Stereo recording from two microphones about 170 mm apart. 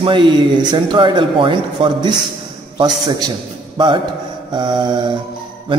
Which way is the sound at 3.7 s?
25° right (ahead or behind).